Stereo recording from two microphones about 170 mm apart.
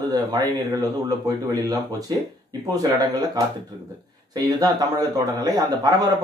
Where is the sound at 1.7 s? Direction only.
20° right (ahead or behind).